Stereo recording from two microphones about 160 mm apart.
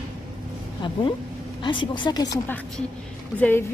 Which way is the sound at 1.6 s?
30° left (ahead or behind).